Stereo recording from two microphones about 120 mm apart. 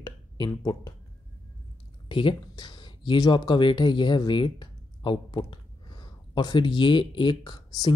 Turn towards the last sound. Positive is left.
turn(degrees=40)  # may be behind; listen again after turning